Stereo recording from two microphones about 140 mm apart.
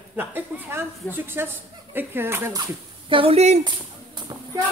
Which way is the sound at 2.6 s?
40° right (ahead or behind).